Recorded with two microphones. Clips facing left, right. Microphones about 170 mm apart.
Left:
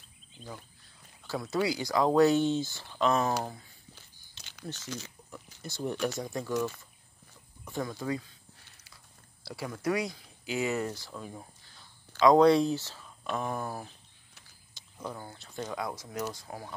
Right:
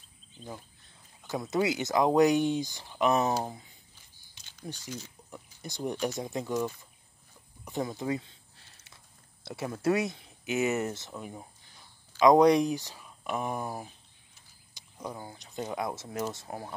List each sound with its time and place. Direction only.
1.2 s speech: 20° right (ahead or behind)
3.9 s biting: 75° left (ahead or behind)
4.7 s speech: 85° left
5.6 s speech: 15° right (ahead or behind)
7.6 s a sound: 20° right (ahead or behind)
9.4 s speech: 25° right (ahead or behind)